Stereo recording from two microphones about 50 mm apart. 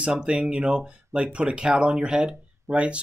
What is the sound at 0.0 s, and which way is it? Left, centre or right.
Speech, right.